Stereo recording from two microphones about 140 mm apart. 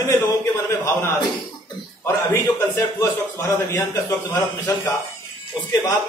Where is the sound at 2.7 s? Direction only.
15° left (ahead or behind).